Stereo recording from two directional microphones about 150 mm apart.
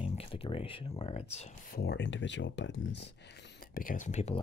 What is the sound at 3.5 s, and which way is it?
Speech, 70° left (ahead or behind).